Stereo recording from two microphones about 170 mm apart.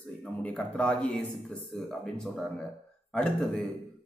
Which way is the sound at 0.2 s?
10° left (ahead or behind).